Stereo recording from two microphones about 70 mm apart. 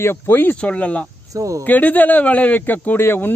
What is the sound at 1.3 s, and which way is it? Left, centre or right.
Speech, right.